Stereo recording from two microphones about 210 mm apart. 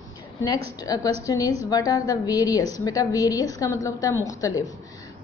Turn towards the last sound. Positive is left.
turn(degrees=15)  # may be behind; listen again after turning